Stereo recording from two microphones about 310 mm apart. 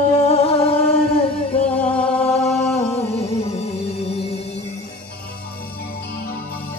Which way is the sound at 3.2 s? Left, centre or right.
Centre.